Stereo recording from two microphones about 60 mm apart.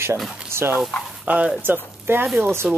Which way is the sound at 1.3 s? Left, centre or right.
Right.